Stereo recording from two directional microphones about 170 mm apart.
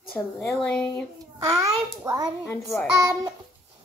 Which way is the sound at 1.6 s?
15° right (ahead or behind).